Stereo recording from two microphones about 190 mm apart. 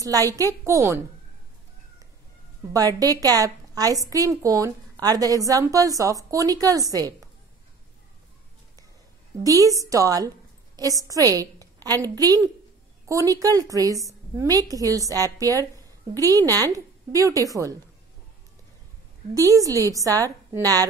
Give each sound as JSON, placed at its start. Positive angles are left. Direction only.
{"t": 0.0, "sound": "a woman's voice", "side_deg": -20}
{"t": 2.7, "sound": "a woman's voice", "side_deg": -20}
{"t": 9.4, "sound": "a woman's voice", "side_deg": -20}
{"t": 19.3, "sound": "a woman's voice", "side_deg": -15}